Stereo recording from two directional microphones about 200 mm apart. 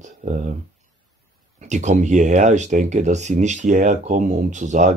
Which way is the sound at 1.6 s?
35° right (ahead or behind).